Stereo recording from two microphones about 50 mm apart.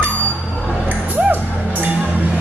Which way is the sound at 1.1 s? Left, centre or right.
Right.